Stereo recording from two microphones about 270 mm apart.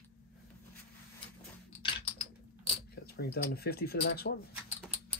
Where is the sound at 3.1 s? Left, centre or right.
Left.